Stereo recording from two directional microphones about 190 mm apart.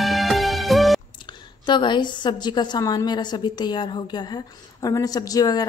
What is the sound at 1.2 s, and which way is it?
A woman's voice, 25° left (ahead or behind).